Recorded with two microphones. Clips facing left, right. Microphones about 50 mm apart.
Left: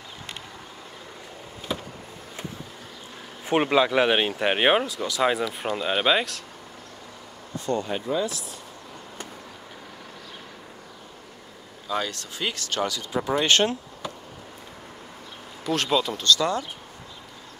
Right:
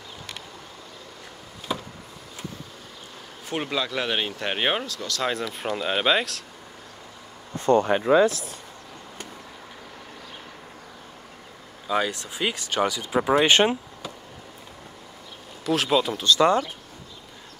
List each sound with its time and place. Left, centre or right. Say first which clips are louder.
3.4 s speech: left 7 dB; left; by 6.4 s centre
7.6 s speech: right 8 dB; right
7.9 s speech: right 8 dB; right
8.3 s speech: right 4 dB; right
11.9 s speech: right 3 dB; centre
15.6 s speech: right 2 dB; centre
16.3 s speech: right 6 dB; right